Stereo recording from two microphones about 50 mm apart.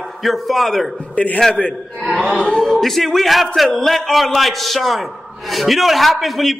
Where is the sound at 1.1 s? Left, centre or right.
Left.